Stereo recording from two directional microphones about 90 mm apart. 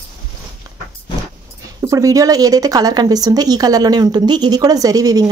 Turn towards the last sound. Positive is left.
turn(degrees=-45)  # may be behind; listen again after turning